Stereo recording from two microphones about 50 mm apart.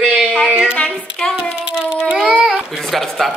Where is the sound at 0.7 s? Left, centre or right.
Left.